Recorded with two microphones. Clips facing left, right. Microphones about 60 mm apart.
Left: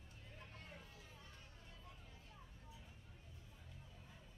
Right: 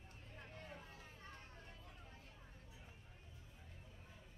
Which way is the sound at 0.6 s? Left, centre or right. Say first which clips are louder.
Right 3 dB; right.